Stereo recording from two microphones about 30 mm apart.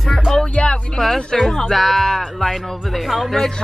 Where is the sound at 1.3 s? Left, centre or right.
Centre.